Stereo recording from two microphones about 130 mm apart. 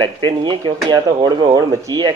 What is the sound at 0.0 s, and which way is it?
Speech, 35° right (ahead or behind).